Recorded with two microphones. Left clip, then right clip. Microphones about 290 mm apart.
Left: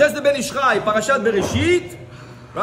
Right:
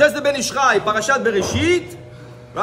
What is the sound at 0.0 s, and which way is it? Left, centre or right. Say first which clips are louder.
A man's voice: even; centre.